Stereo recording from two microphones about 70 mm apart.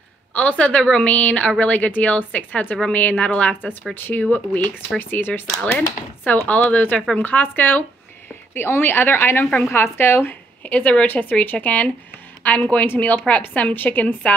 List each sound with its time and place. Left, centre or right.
0.3 s a woman's voice: left
9.5 s a woman's voice: left
9.8 s a woman's voice: left
10.6 s a woman's voice: centre